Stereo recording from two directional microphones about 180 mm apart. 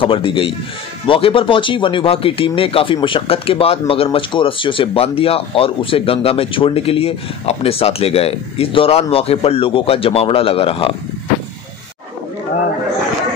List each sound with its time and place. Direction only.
0.0 s a man's voice: 30° left (ahead or behind)